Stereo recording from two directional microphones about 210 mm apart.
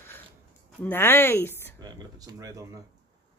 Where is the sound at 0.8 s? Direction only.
10° left (ahead or behind).